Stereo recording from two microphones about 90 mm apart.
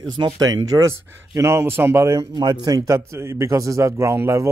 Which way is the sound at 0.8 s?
35° right (ahead or behind).